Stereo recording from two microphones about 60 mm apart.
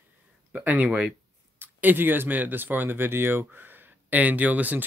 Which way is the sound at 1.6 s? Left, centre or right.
Right.